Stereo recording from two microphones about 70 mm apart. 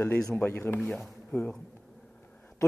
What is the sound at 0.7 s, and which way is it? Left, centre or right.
Speech, centre.